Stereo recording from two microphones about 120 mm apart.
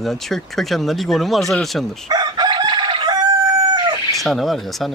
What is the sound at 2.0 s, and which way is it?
Chicken, 35° right (ahead or behind).